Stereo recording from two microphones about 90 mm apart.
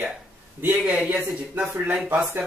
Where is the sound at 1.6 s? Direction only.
30° right (ahead or behind).